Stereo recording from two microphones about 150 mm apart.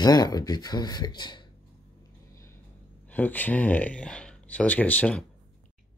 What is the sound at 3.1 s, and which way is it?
Speech, 10° left (ahead or behind).